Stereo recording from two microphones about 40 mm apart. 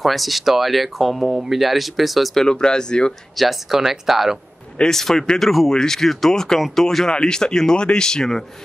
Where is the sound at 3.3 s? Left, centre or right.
Centre.